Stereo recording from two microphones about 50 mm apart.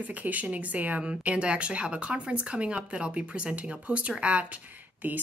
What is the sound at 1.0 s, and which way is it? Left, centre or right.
Speech, right.